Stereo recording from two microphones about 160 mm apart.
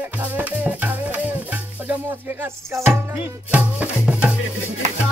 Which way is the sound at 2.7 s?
15° right (ahead or behind).